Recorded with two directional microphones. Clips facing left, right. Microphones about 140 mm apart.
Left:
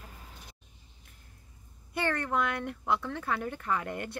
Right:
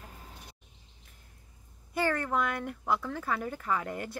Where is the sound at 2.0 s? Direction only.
5° right (ahead or behind).